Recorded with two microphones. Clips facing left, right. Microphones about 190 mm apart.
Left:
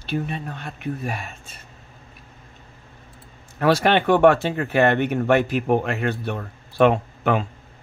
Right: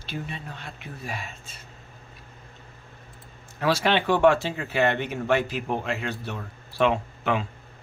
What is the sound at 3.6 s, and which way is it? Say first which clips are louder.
Speech: left 5 dB; 55° left (ahead or behind).